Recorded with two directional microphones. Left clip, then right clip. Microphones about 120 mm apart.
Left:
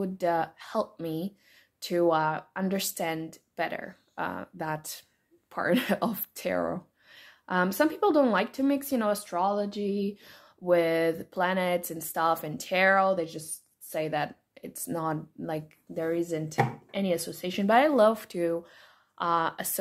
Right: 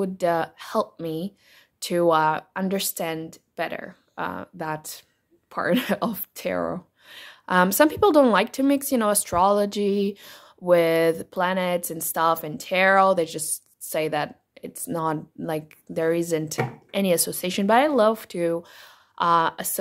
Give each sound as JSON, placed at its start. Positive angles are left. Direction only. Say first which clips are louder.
{"t": 0.0, "sound": "a woman's voice", "louder": "right 4 dB", "side_deg": -45}
{"t": 1.8, "sound": "a woman's voice", "louder": "right 5 dB", "side_deg": -45}
{"t": 7.1, "sound": "a sound", "louder": "right 8 dB", "side_deg": -45}
{"t": 9.2, "sound": "a sound", "louder": "right 8 dB", "side_deg": -85}
{"t": 13.0, "sound": "a woman's voice", "louder": "right 7 dB", "side_deg": -65}
{"t": 14.1, "sound": "speech", "louder": "right 4 dB", "side_deg": -35}
{"t": 16.0, "sound": "a woman's voice", "louder": "right 7 dB", "side_deg": -60}
{"t": 17.6, "sound": "a woman's voice", "louder": "right 3 dB", "side_deg": -35}